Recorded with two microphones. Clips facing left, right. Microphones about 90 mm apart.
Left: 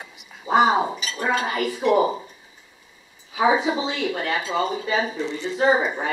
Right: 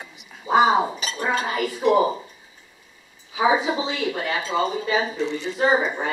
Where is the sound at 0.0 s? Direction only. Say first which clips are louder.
Even; centre (ahead or behind).